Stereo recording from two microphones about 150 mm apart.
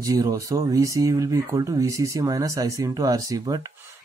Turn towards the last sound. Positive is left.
turn(degrees=-25)  # may be behind; listen again after turning